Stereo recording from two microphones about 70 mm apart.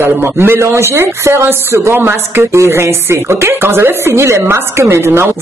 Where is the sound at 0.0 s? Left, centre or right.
Right.